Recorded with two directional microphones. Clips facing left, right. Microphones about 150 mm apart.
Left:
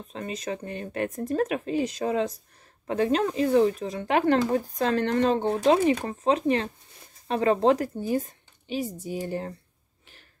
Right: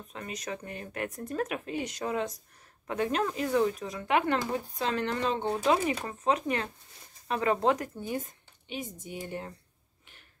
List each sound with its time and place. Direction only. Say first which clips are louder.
0.1 s speech: left 6 dB; 30° left (ahead or behind)
5.4 s speech: left 6 dB; 30° left (ahead or behind)